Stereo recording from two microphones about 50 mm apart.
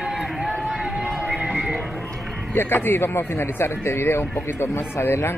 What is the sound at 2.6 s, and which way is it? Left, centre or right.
A man's voice, left.